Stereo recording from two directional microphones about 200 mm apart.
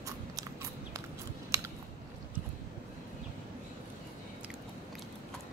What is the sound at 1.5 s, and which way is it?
Chewing, 15° right (ahead or behind).